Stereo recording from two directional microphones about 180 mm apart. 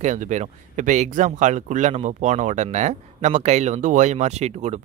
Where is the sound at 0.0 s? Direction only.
40° right (ahead or behind).